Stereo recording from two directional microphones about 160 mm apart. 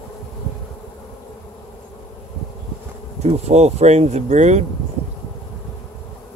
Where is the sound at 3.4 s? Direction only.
45° right (ahead or behind).